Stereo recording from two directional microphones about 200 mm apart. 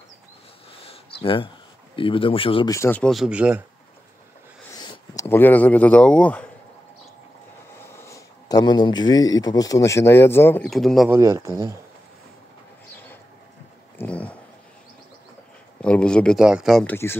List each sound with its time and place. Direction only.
1.2 s speech: 25° left (ahead or behind); by 3.6 s 5° right (ahead or behind)
4.7 s speech: 20° left (ahead or behind)
7.8 s speech: 15° left (ahead or behind)
11.1 s a man's voice: 15° right (ahead or behind)
13.9 s a sound: 5° left (ahead or behind)
15.8 s a man's voice: 5° left (ahead or behind)